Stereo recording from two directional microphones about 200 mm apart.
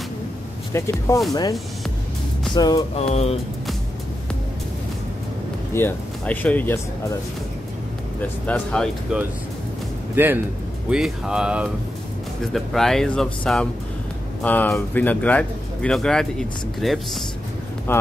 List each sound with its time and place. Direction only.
0.7 s speech: 15° left (ahead or behind)
2.5 s speech: 20° left (ahead or behind)
3.0 s speech: 30° left (ahead or behind)
5.7 s speech: 10° left (ahead or behind)
8.2 s speech: 5° left (ahead or behind)
9.1 s speech: 5° right (ahead or behind)